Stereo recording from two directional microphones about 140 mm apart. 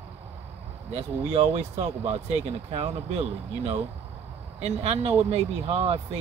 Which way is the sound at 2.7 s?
45° right (ahead or behind).